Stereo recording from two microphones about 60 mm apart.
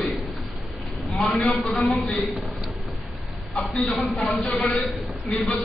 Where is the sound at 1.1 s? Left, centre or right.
Centre.